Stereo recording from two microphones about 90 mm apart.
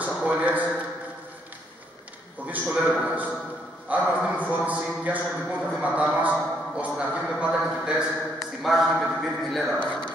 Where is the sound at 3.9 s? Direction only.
20° right (ahead or behind).